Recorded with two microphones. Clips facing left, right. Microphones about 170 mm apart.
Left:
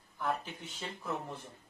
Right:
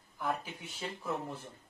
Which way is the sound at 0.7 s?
Centre (ahead or behind).